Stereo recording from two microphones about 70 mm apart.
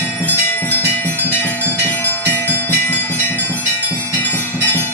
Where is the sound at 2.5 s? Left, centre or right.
Left.